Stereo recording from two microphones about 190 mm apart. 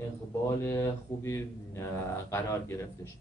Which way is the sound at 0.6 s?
15° left (ahead or behind).